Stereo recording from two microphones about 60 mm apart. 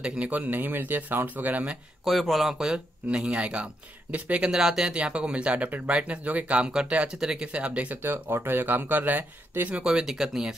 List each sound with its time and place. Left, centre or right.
0.0 s speech: centre
0.3 s speech: right
2.0 s speech: centre
3.1 s speech: centre
4.5 s speech: centre
8.0 s speech: right
9.8 s speech: centre